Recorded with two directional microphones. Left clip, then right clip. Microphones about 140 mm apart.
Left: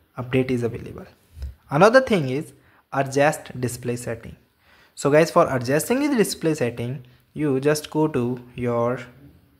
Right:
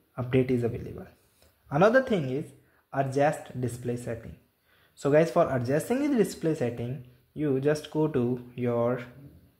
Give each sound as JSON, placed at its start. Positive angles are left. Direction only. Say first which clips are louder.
{"t": 0.1, "sound": "speech", "louder": "left 3 dB", "side_deg": 5}
{"t": 1.7, "sound": "speech", "louder": "left 7 dB", "side_deg": 20}